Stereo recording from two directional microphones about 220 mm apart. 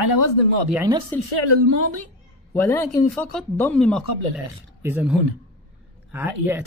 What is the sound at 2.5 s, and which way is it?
Speech, 10° left (ahead or behind).